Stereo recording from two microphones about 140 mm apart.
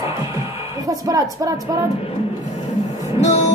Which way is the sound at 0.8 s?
25° right (ahead or behind).